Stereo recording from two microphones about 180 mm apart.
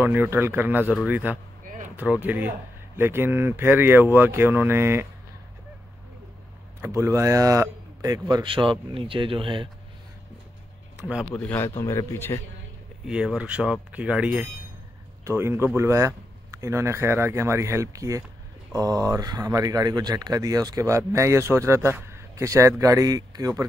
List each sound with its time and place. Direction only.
0.0 s speech: 10° right (ahead or behind)
6.8 s speech: 15° right (ahead or behind)
11.0 s speech: 5° right (ahead or behind)
11.3 s a man's voice: 15° left (ahead or behind)
13.0 s speech: 5° right (ahead or behind); by 23.6 s 20° right (ahead or behind)